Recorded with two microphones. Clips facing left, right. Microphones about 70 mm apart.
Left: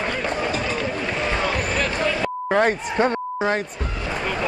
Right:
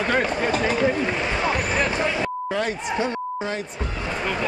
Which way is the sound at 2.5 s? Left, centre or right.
Left.